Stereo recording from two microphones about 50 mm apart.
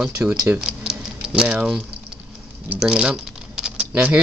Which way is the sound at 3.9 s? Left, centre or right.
Right.